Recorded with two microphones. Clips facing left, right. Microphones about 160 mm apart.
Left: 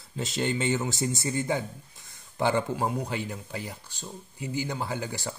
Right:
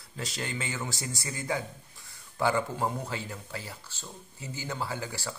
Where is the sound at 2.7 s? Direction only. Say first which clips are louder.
Left 3 dB; 15° left (ahead or behind).